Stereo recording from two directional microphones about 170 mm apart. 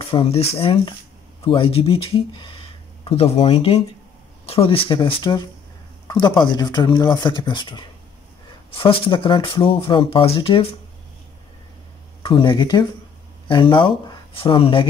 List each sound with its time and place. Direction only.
0.0 s speech: 30° left (ahead or behind)
12.2 s speech: 30° left (ahead or behind)